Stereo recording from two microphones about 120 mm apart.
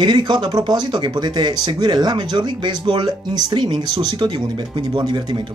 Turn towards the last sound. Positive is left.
turn(degrees=-35)  # may be behind; listen again after turning